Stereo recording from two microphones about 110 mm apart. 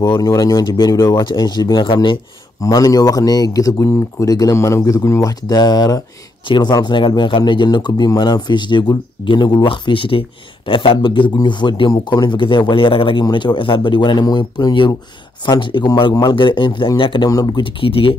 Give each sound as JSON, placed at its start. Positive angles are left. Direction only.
{"t": 0.0, "sound": "speech", "side_deg": 40}
{"t": 2.6, "sound": "speech", "side_deg": 35}
{"t": 17.3, "sound": "speech", "side_deg": 35}